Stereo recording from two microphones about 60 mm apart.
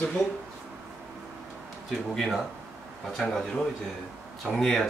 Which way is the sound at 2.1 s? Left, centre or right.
Centre.